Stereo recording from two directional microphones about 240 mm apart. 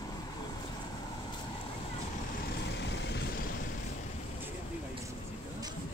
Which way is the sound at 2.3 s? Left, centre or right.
Left.